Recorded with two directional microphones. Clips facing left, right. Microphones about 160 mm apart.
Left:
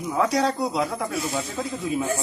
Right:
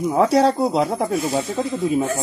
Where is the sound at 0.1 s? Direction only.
30° right (ahead or behind).